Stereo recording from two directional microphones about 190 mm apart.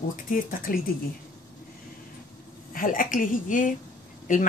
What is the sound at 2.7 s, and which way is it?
Speech, 45° left (ahead or behind).